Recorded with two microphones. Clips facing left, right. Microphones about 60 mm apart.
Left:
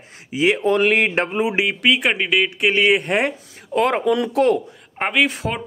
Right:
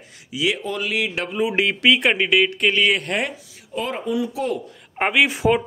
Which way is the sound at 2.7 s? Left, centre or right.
Left.